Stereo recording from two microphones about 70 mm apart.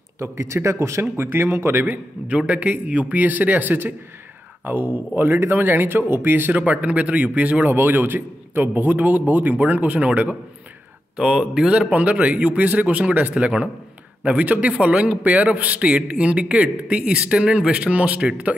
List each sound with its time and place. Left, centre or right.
0.2 s a man's voice: right
11.1 s a man's voice: centre